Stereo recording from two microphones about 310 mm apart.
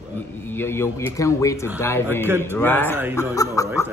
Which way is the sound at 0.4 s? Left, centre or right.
Centre.